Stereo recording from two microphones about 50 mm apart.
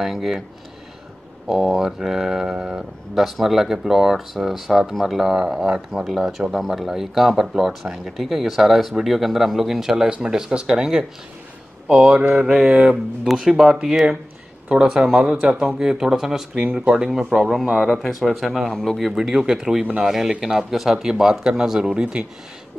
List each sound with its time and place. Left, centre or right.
0.0 s speech: centre
1.5 s speech: centre
10.0 s speech: centre
12.2 s mantra: right
12.5 s speech: centre
16.7 s speech: centre
17.4 s speech: centre
19.1 s speech: centre